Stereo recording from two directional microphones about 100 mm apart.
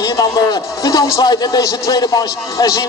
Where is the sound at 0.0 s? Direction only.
45° left (ahead or behind).